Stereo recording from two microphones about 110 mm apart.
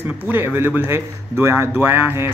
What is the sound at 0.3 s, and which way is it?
A man's voice, 20° right (ahead or behind).